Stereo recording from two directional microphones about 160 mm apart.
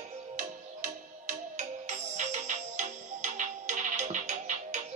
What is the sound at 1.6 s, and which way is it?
Music, 50° right (ahead or behind).